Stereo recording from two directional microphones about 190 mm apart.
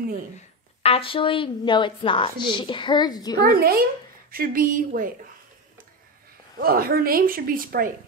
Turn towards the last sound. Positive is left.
turn(degrees=-50)  # may be behind; listen again after turning